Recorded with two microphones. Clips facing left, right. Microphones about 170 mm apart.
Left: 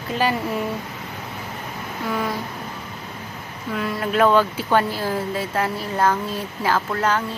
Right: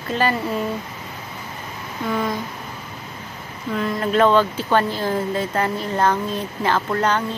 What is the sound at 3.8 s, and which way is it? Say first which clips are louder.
Speech: right 2 dB; 5° left (ahead or behind).